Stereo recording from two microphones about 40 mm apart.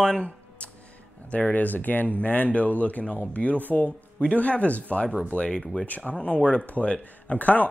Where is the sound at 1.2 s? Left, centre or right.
Left.